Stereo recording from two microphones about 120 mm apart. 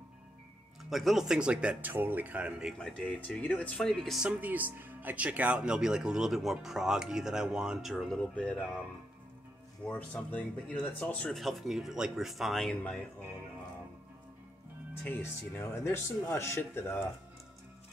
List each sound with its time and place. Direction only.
0.8 s speech: centre (ahead or behind)
2.8 s speech: 10° left (ahead or behind)
9.8 s speech: 10° left (ahead or behind)
11.3 s speech: centre (ahead or behind)
15.0 s speech: 15° left (ahead or behind)